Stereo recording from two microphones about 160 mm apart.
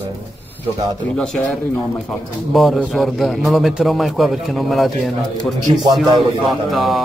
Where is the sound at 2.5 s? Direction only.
Centre (ahead or behind).